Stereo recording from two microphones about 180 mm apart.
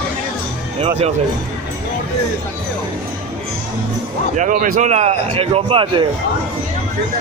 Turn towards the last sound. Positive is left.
turn(degrees=-30)  # may be behind; listen again after turning